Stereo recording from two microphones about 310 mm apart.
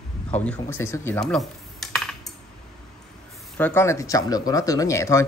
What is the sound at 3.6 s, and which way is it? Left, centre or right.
Speech, centre.